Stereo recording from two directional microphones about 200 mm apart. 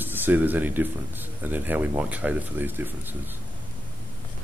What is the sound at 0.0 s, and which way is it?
Speech, 10° right (ahead or behind).